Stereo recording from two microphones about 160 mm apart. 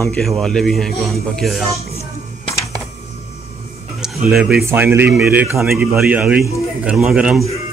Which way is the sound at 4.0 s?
Centre (ahead or behind).